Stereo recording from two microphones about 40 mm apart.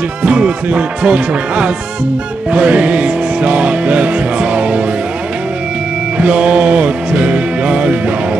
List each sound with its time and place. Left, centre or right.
0.2 s speech: right
2.5 s music: right
6.1 s music: right